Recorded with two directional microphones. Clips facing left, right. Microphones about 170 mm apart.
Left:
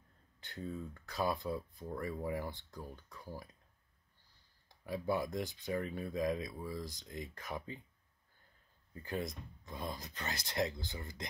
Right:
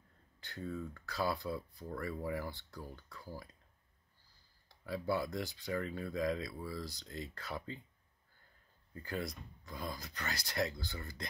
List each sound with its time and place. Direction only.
0.4 s speech: 20° left (ahead or behind)
4.6 s speech: 15° left (ahead or behind)
8.9 s speech: 20° left (ahead or behind)